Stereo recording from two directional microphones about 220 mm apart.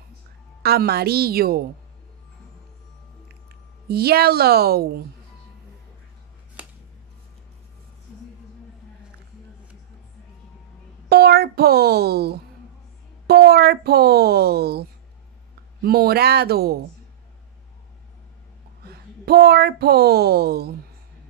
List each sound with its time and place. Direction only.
0.6 s a woman's voice: 45° right (ahead or behind)
3.8 s a woman's voice: 45° right (ahead or behind)
6.6 s music: 5° right (ahead or behind)
11.1 s a child's voice: 45° right (ahead or behind)
18.9 s a woman's voice: 45° right (ahead or behind)